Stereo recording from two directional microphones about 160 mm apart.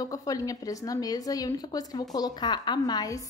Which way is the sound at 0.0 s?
20° left (ahead or behind).